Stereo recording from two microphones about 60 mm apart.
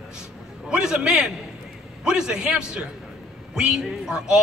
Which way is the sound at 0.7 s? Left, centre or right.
Centre.